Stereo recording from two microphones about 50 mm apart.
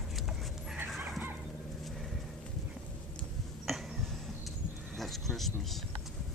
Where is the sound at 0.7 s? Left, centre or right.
Right.